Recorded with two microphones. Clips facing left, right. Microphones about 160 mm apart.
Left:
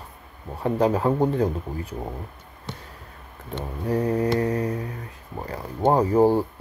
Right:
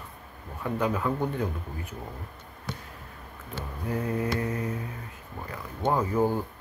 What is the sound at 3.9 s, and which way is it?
Speech, 35° left (ahead or behind).